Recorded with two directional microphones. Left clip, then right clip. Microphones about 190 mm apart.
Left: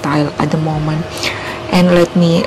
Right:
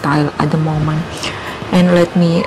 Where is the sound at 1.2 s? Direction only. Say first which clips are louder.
Left 3 dB; 15° left (ahead or behind).